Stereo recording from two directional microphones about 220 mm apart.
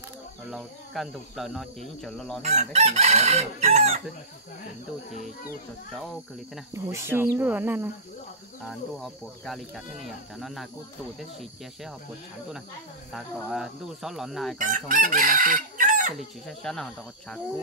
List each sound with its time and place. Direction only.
0.5 s speech: centre (ahead or behind)
2.4 s chicken: 30° right (ahead or behind)
6.7 s speech: 10° right (ahead or behind)
8.6 s speech: centre (ahead or behind)
13.1 s speech: centre (ahead or behind)
14.6 s chicken: 35° right (ahead or behind)
16.2 s speech: centre (ahead or behind)